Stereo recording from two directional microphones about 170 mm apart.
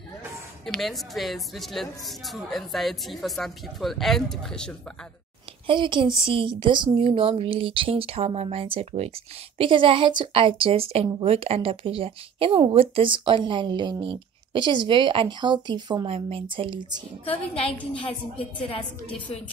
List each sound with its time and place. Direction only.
0.7 s a woman's voice: centre (ahead or behind)
5.7 s a woman's voice: 30° right (ahead or behind)
17.2 s a woman's voice: 35° left (ahead or behind)